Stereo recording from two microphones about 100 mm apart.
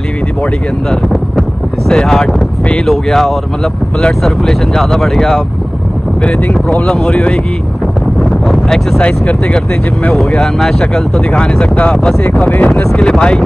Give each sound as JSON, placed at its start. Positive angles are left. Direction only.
{"t": 1.9, "sound": "speech", "side_deg": 5}